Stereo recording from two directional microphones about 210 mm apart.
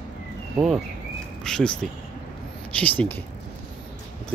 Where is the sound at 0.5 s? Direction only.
Centre (ahead or behind).